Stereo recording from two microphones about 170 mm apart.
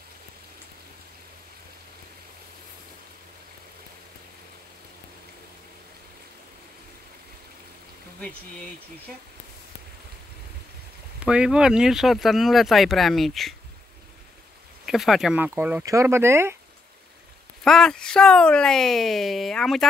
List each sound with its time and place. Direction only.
11.2 s speech: 5° right (ahead or behind)
14.9 s speech: centre (ahead or behind)
17.6 s speech: 5° left (ahead or behind)